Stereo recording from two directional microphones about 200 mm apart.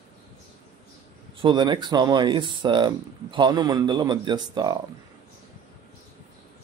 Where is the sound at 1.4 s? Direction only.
25° right (ahead or behind).